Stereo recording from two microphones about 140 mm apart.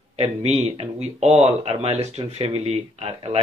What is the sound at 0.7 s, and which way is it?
Speech, 50° right (ahead or behind).